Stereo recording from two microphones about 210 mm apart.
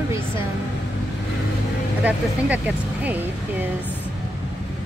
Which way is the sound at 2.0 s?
5° right (ahead or behind).